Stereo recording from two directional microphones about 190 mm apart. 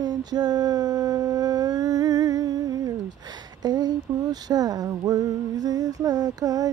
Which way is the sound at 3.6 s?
20° right (ahead or behind).